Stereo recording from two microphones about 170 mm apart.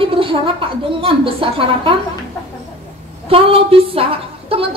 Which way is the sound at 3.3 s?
35° right (ahead or behind).